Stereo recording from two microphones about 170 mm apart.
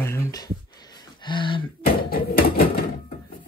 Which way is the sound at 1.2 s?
30° left (ahead or behind).